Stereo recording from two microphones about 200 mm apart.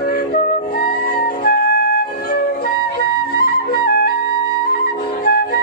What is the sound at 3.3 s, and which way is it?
Flute, 50° left (ahead or behind).